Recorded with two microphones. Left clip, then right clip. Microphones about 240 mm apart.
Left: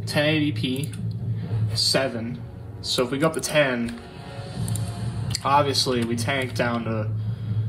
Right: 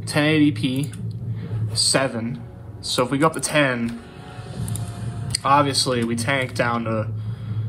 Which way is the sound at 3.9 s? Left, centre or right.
Left.